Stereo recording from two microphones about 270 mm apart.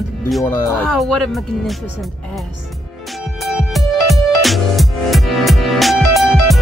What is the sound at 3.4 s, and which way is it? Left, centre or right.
Music, centre.